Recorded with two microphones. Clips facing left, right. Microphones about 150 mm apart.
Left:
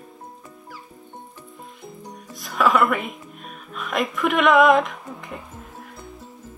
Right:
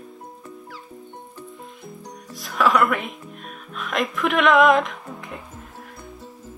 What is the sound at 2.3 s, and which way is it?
Speech, centre (ahead or behind).